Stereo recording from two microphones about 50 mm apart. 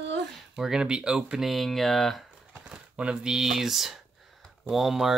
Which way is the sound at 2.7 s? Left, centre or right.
Centre.